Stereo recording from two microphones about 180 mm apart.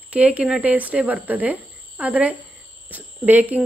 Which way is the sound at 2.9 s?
10° right (ahead or behind).